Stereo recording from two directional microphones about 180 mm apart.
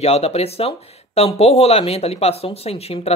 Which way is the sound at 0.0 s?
35° left (ahead or behind).